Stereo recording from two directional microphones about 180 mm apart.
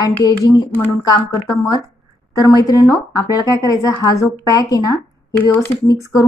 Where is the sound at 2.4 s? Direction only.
20° left (ahead or behind).